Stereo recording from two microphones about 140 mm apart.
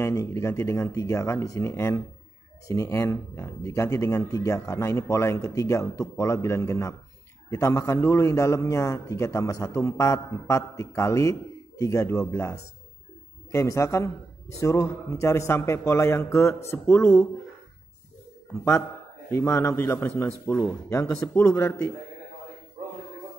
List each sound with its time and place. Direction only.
0.0 s a man's voice: 20° left (ahead or behind)
18.6 s a man's voice: 20° left (ahead or behind)